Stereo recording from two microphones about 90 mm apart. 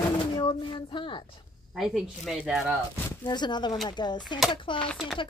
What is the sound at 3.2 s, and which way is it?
Speech, 55° left (ahead or behind).